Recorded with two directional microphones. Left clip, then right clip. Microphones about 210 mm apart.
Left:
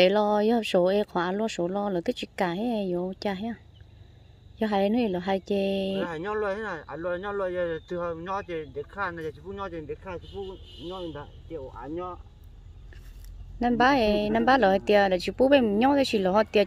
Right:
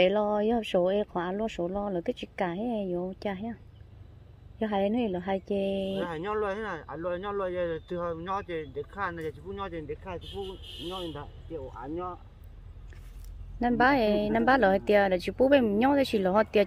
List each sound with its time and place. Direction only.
0.0 s speech: 20° left (ahead or behind)
4.6 s speech: 20° left (ahead or behind)
13.6 s speech: 10° left (ahead or behind)